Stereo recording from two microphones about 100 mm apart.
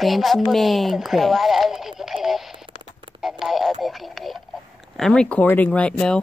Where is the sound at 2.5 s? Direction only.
55° right (ahead or behind).